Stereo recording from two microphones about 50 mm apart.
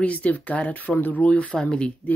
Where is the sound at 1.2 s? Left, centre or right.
Left.